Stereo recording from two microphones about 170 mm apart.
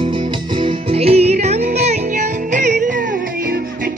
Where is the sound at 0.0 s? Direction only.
30° right (ahead or behind).